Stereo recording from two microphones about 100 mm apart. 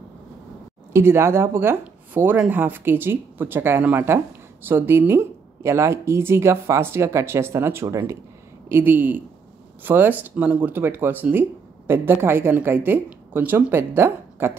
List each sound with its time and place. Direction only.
0.9 s speech: 25° right (ahead or behind)